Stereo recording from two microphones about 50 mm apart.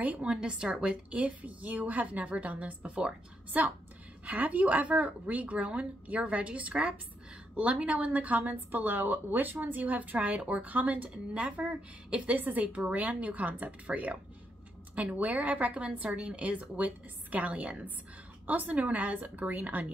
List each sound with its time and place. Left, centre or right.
0.0 s a woman's voice: right
0.3 s a woman's voice: centre
15.1 s a woman's voice: right